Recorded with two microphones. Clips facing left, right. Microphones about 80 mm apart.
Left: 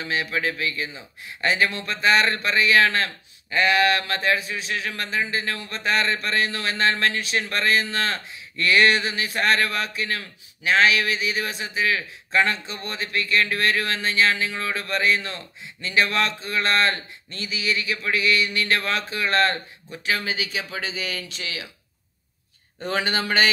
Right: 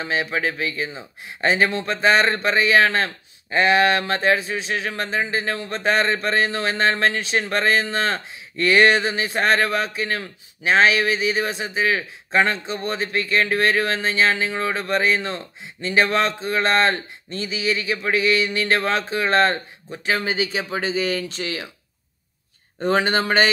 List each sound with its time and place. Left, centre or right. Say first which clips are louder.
0.0 s speech: right 2 dB; right
22.8 s a man's voice: right 6 dB; right